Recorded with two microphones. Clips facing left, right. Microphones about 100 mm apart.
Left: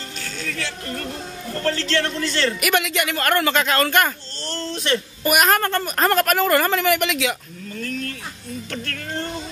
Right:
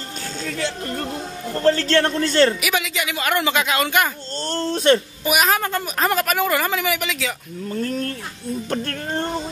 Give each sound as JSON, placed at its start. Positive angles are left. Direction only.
{"t": 0.4, "sound": "speech", "side_deg": -30}
{"t": 1.8, "sound": "a man's voice", "side_deg": -40}
{"t": 2.6, "sound": "a woman's voice", "side_deg": 0}
{"t": 4.5, "sound": "speech", "side_deg": -45}
{"t": 5.2, "sound": "a woman's voice", "side_deg": 0}
{"t": 7.7, "sound": "a sound", "side_deg": -35}
{"t": 8.6, "sound": "music", "side_deg": -35}